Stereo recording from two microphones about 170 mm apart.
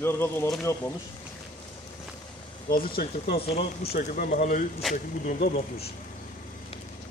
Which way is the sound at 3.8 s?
60° left (ahead or behind).